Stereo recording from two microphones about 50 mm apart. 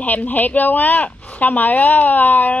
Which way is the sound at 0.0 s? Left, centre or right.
Left.